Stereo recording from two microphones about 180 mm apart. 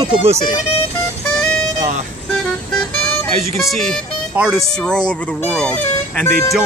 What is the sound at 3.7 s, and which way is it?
Speech, centre (ahead or behind).